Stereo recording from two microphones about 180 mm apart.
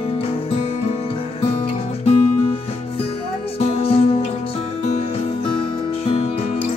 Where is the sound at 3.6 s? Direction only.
30° left (ahead or behind).